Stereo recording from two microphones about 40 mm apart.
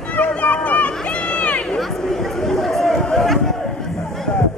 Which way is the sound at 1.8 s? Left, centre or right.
Centre.